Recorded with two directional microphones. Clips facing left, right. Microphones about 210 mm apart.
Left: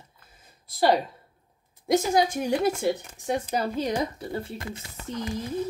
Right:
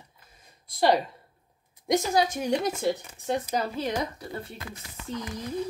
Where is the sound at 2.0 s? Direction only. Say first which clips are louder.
Left 2 dB; 15° left (ahead or behind).